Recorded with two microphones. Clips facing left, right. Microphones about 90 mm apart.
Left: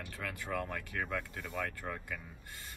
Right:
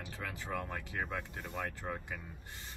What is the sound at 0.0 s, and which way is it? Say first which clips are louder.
Speech: left 1 dB; 20° right (ahead or behind).